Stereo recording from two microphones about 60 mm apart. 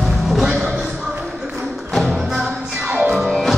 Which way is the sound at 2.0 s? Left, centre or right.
Centre.